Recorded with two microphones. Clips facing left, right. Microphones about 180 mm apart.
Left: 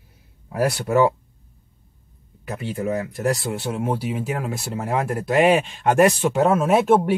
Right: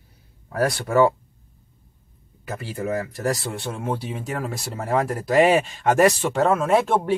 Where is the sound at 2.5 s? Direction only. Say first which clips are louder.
Left 2 dB; centre (ahead or behind).